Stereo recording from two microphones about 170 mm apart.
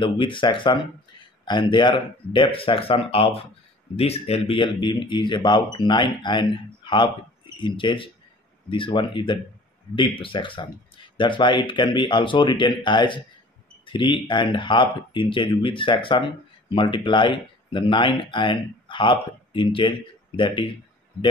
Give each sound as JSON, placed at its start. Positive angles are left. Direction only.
{"t": 0.0, "sound": "speech", "side_deg": 30}